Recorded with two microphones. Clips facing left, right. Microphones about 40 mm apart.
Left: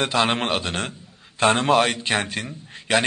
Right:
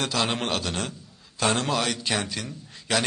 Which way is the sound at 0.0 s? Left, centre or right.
Left.